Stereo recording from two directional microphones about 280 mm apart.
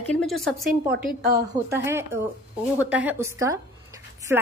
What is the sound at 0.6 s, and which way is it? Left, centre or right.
Speech, right.